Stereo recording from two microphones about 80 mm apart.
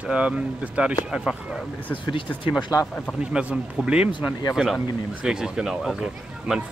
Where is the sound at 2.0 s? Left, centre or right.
Left.